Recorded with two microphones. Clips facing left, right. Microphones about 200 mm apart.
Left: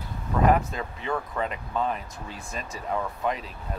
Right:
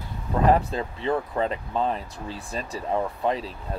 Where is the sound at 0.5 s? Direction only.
30° right (ahead or behind).